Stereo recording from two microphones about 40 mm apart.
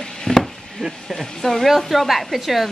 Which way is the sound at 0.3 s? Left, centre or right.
Centre.